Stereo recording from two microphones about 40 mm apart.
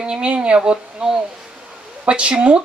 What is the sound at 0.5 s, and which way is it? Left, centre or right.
Speech, centre.